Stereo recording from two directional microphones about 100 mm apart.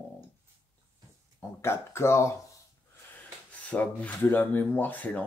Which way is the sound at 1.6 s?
25° left (ahead or behind).